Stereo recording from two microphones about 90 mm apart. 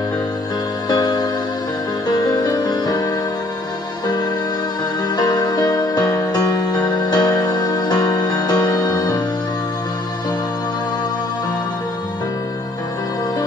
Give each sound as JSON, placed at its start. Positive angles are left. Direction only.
{"t": 0.8, "sound": "music", "side_deg": 50}
{"t": 5.1, "sound": "music", "side_deg": 50}